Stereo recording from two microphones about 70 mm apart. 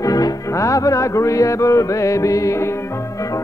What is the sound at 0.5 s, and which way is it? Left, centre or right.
Music, left.